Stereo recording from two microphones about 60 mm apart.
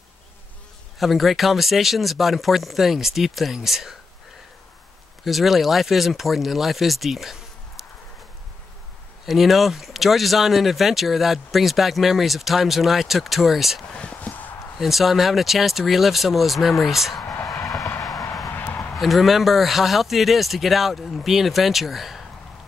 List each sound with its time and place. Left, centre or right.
0.9 s speech: centre
5.2 s speech: centre
9.2 s speech: centre
13.9 s a sound: left
14.8 s speech: centre
18.5 s a sound: left
18.9 s speech: centre